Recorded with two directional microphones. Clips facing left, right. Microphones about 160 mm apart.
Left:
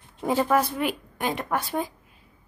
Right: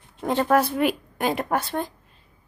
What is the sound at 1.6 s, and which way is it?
Speech, 5° left (ahead or behind).